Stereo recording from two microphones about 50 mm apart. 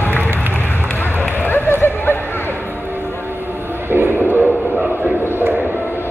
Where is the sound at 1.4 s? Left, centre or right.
Left.